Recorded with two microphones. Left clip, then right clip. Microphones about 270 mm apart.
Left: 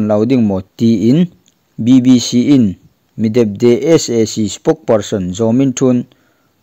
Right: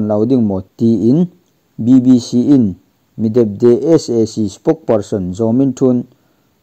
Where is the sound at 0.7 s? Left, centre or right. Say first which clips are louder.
Even; left.